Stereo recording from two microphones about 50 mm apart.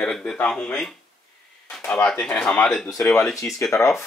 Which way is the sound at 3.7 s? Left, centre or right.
Left.